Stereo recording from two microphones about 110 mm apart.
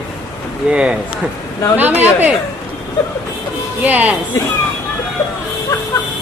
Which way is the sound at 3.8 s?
15° right (ahead or behind).